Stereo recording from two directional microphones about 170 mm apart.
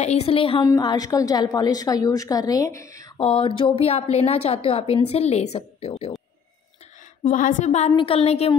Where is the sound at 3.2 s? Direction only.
30° left (ahead or behind).